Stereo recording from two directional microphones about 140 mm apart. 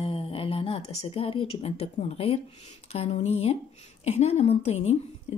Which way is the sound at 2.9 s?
45° left (ahead or behind).